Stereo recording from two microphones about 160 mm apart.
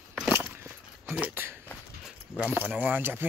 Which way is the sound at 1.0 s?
10° right (ahead or behind).